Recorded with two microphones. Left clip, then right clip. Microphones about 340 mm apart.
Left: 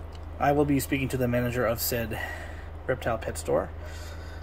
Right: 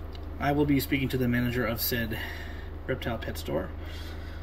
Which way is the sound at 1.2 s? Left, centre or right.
Left.